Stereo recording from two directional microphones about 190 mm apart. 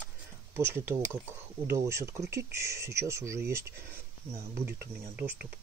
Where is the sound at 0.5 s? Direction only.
10° right (ahead or behind).